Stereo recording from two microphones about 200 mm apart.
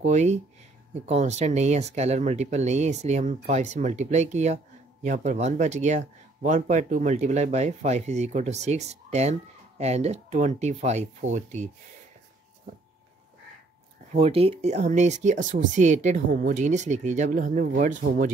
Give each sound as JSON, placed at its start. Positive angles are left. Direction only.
{"t": 0.0, "sound": "speech", "side_deg": -35}
{"t": 14.1, "sound": "speech", "side_deg": -30}